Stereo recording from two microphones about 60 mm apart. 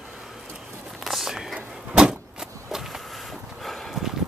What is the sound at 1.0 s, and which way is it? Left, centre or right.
Vehicle, centre.